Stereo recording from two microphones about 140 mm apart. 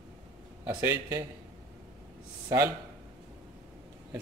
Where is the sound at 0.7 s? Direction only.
20° right (ahead or behind).